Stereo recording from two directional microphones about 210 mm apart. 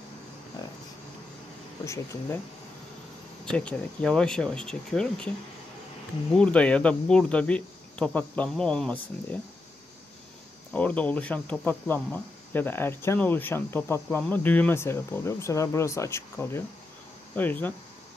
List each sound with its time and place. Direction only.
0.6 s a sound: 20° left (ahead or behind)
3.4 s speech: 5° left (ahead or behind)
6.3 s speech: 5° left (ahead or behind)
10.7 s speech: 5° left (ahead or behind)